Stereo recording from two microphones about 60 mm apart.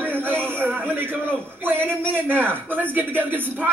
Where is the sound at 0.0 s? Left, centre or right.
Right.